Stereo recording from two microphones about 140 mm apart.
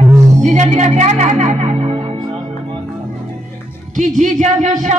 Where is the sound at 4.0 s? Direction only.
60° right (ahead or behind).